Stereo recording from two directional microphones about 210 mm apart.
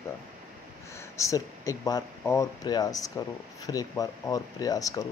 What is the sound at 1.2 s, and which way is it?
Speech, 15° left (ahead or behind).